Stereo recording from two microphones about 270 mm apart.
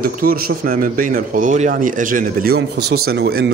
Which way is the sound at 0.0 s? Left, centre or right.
Right.